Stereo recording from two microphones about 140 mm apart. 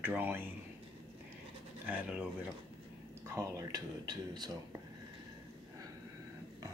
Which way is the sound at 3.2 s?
20° right (ahead or behind).